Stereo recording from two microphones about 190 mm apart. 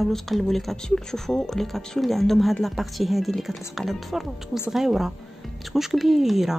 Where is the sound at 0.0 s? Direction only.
Centre (ahead or behind).